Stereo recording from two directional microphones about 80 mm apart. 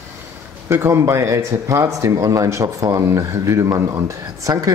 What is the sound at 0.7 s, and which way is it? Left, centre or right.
Speech, right.